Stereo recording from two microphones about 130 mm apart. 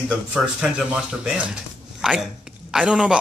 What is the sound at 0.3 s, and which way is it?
A man's voice, 10° right (ahead or behind).